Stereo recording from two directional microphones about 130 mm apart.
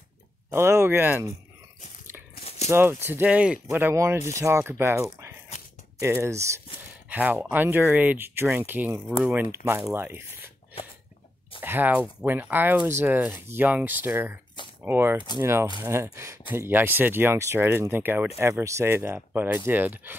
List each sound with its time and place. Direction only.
0.5 s speech: 20° right (ahead or behind)
2.7 s speech: 20° right (ahead or behind)
11.6 s speech: 15° right (ahead or behind)